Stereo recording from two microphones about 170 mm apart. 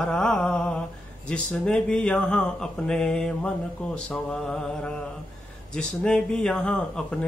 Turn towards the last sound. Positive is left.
turn(degrees=5)  # may be behind; listen again after turning